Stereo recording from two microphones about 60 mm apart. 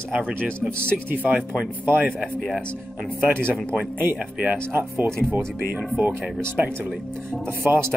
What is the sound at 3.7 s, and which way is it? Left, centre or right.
Speech, right.